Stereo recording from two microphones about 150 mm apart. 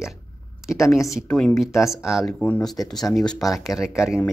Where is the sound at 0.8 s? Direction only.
20° left (ahead or behind).